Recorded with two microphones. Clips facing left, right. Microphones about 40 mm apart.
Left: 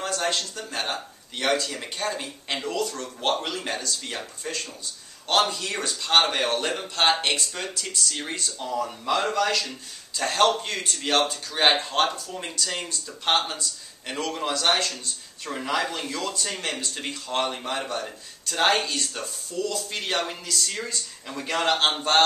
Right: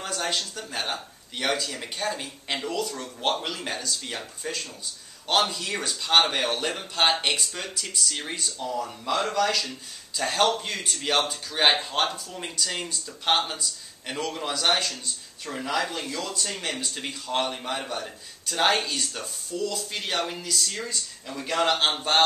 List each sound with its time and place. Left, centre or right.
0.0 s a man's voice: centre
8.5 s speech: centre
10.1 s a man's voice: centre
16.3 s speech: centre
17.1 s a man's voice: centre